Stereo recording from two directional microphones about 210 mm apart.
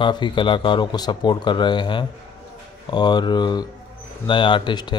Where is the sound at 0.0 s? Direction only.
20° left (ahead or behind).